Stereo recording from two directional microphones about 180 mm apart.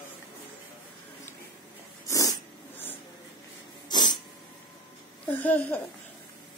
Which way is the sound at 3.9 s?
25° left (ahead or behind).